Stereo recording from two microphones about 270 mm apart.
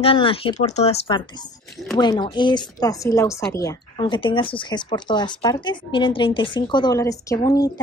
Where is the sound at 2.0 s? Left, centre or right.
Centre.